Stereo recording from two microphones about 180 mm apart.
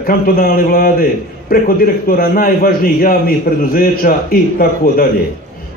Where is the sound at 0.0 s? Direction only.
55° left (ahead or behind).